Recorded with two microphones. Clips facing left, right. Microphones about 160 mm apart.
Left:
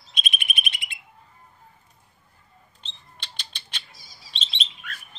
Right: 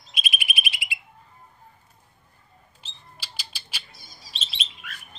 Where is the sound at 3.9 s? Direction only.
55° right (ahead or behind).